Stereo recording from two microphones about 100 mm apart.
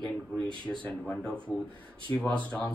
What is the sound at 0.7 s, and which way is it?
Speech, 15° left (ahead or behind).